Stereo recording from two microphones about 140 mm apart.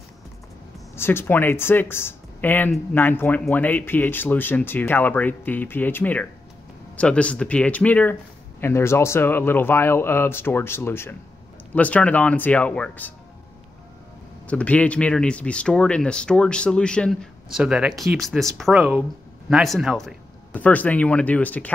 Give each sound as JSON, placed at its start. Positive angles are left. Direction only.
{"t": 0.9, "sound": "speech", "side_deg": 15}
{"t": 14.5, "sound": "speech", "side_deg": 10}
{"t": 20.5, "sound": "speech", "side_deg": 10}